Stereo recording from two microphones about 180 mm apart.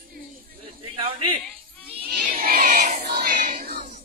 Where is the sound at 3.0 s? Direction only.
50° right (ahead or behind).